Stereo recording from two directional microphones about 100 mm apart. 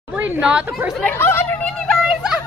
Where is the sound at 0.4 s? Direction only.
10° right (ahead or behind).